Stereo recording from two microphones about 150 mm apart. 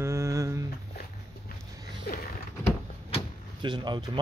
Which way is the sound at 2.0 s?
75° left (ahead or behind).